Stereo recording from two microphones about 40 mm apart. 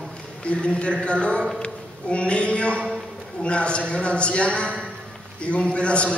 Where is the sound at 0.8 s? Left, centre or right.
Left.